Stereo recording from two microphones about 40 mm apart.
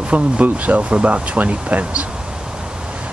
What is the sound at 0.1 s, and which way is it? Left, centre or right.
Speech, right.